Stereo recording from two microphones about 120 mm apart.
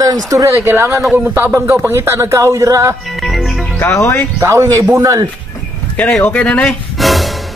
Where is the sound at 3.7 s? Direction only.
25° left (ahead or behind).